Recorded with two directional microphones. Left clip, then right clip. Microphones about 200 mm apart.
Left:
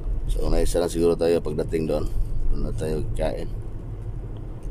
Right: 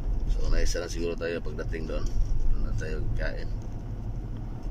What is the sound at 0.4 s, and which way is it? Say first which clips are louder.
Speech: left 10 dB; 20° left (ahead or behind).